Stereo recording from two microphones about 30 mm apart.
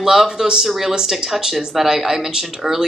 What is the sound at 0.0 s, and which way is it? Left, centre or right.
Speech, centre.